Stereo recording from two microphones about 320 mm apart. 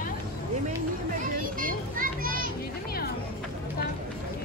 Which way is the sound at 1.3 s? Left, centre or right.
Right.